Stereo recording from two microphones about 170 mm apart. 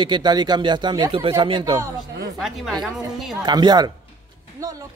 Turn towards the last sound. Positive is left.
turn(degrees=-25)  # may be behind; listen again after turning